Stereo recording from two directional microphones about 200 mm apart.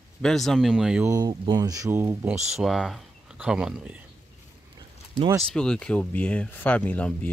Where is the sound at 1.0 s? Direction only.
20° right (ahead or behind).